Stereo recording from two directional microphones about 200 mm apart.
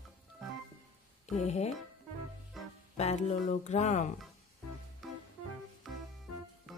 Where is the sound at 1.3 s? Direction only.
35° left (ahead or behind).